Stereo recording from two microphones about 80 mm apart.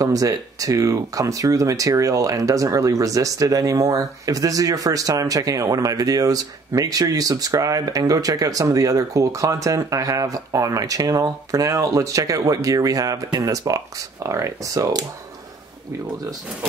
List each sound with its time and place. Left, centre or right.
0.0 s speech: right